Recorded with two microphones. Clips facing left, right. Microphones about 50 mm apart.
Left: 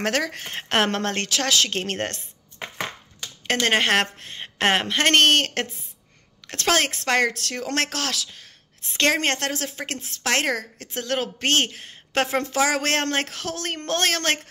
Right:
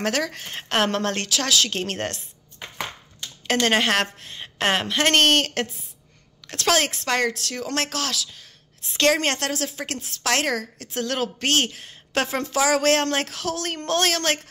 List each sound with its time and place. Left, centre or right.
0.0 s a woman's voice: left
3.6 s a woman's voice: left